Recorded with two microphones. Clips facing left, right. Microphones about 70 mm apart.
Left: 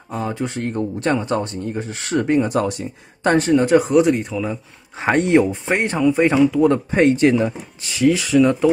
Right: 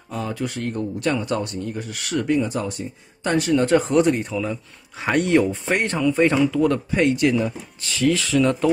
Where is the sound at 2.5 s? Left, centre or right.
Left.